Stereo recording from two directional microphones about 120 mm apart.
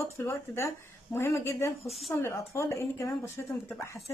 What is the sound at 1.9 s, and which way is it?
Speech, centre (ahead or behind).